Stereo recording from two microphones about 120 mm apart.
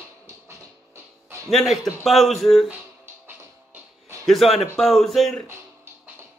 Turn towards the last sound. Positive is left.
turn(degrees=0)  # may be behind; listen again after turning